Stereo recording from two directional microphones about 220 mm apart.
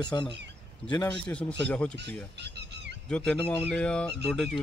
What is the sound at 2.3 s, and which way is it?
Squawk, 50° right (ahead or behind).